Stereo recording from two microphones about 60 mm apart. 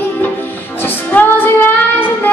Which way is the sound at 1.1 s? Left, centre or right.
Left.